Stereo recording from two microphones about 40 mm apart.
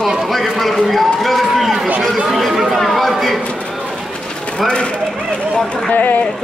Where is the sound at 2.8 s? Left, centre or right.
Centre.